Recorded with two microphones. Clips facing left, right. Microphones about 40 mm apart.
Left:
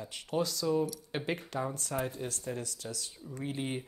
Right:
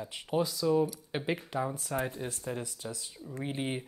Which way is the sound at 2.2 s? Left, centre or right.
Right.